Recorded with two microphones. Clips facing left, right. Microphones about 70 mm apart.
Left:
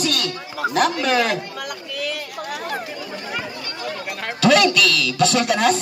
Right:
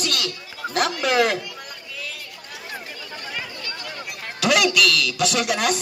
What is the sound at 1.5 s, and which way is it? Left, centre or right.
Chatter, left.